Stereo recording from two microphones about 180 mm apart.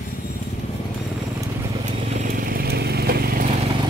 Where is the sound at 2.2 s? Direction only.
50° right (ahead or behind).